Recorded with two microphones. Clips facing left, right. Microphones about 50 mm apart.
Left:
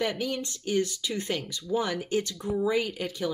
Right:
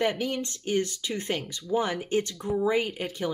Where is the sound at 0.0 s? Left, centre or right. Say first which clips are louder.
Right 2 dB; right.